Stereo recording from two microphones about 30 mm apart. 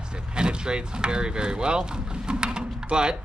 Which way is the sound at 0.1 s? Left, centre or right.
Right.